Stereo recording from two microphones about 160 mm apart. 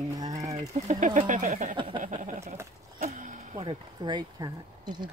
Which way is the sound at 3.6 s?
25° right (ahead or behind).